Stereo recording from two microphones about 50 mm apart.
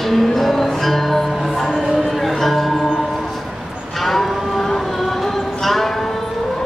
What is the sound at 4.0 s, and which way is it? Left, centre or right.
Livestock, centre.